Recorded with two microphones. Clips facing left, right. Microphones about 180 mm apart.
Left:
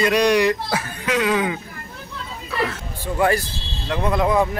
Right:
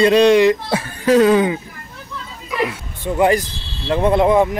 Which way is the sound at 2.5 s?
15° right (ahead or behind).